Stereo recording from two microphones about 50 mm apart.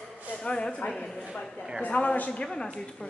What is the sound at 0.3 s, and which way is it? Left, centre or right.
Speech, left.